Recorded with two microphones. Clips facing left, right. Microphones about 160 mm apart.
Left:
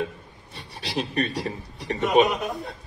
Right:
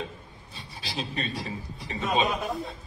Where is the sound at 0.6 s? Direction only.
75° left (ahead or behind).